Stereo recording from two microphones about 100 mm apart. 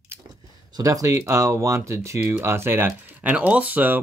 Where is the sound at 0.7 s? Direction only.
35° right (ahead or behind); by 3.9 s 15° right (ahead or behind).